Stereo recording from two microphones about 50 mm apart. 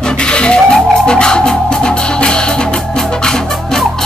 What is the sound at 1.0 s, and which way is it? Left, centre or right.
Music, centre.